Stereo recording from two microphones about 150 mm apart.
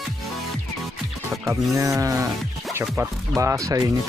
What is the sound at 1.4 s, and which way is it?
Speech, 20° right (ahead or behind).